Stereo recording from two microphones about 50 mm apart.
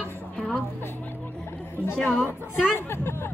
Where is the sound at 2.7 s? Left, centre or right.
Left.